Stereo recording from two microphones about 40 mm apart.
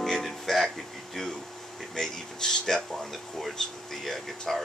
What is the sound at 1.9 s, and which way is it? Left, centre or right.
Speech, centre.